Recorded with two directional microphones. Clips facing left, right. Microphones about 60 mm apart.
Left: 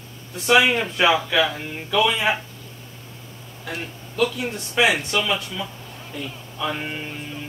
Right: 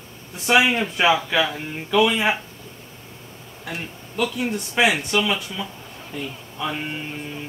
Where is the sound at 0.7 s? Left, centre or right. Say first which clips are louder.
Even; centre.